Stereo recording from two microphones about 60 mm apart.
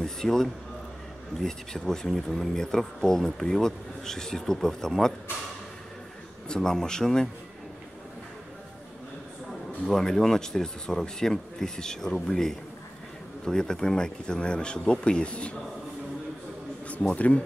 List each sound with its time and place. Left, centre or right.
0.0 s a man's voice: centre
6.5 s speech: centre
9.8 s speech: centre
16.8 s speech: left